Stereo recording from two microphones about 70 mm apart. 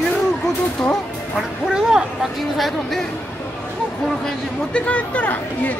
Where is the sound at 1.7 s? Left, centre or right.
Centre.